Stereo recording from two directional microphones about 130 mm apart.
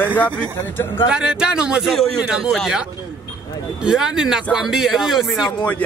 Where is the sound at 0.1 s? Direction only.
10° left (ahead or behind).